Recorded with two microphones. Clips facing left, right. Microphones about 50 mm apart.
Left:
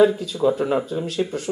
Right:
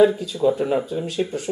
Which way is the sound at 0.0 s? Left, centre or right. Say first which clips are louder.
Even; centre.